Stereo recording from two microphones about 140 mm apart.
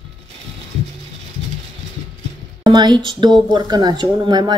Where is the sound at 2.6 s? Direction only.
30° right (ahead or behind).